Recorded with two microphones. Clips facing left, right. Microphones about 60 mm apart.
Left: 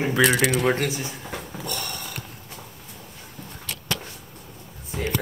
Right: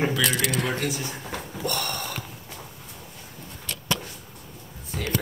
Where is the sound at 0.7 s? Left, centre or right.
Left.